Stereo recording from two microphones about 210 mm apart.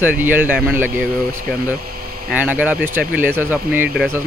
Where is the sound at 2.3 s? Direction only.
5° right (ahead or behind).